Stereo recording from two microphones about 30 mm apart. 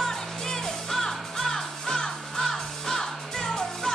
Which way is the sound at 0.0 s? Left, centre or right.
Centre.